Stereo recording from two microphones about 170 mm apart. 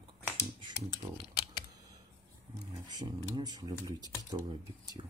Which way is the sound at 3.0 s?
25° right (ahead or behind).